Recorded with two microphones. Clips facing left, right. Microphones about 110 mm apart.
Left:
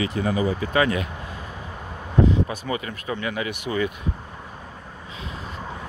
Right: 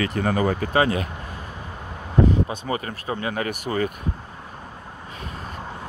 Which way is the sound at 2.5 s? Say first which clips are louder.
Right 1 dB; 25° right (ahead or behind).